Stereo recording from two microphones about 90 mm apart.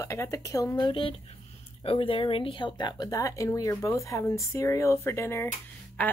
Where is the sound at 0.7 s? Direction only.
55° left (ahead or behind).